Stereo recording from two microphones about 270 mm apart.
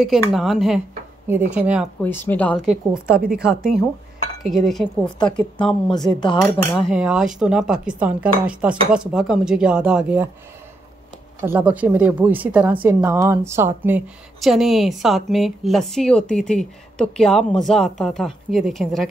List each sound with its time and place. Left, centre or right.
0.0 s a woman's voice: centre
2.0 s a woman's voice: centre
4.4 s a woman's voice: centre
5.6 s speech: centre
6.9 s a woman's voice: centre
11.4 s a woman's voice: centre